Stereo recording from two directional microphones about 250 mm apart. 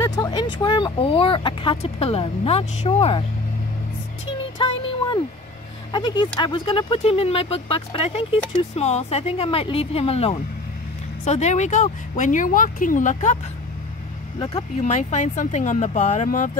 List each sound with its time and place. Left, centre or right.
0.0 s speech: centre
4.6 s speech: centre
5.9 s speech: centre
14.4 s speech: left